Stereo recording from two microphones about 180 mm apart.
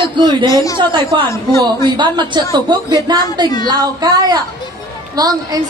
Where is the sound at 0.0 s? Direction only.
25° right (ahead or behind).